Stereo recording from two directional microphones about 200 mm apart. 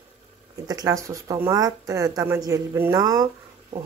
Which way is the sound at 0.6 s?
15° right (ahead or behind).